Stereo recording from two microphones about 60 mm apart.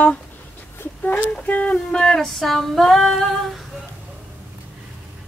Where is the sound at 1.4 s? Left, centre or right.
Left.